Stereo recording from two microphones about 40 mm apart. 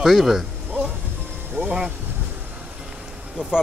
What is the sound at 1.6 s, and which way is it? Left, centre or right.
Vehicle, right.